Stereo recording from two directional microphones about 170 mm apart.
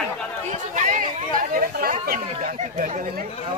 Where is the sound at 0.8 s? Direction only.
50° right (ahead or behind).